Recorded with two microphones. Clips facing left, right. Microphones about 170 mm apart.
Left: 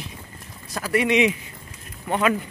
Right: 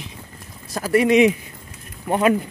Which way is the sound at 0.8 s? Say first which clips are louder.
Right 5 dB; 40° right (ahead or behind).